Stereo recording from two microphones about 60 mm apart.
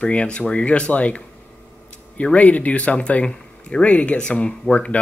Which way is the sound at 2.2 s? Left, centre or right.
Left.